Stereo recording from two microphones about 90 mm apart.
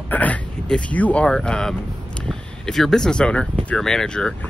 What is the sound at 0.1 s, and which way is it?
Speech, 15° left (ahead or behind).